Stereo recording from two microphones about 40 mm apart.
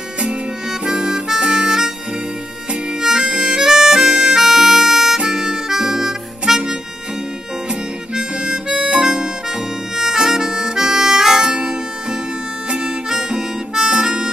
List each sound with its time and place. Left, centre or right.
0.7 s harmonica: centre
8.1 s harmonica: right